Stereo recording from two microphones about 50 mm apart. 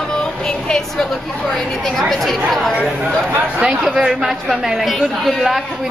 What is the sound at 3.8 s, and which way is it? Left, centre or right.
Speech, centre.